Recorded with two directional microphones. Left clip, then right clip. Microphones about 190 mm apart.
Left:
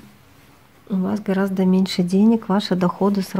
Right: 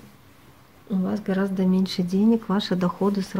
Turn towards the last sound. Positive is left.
turn(degrees=30)  # may be behind; listen again after turning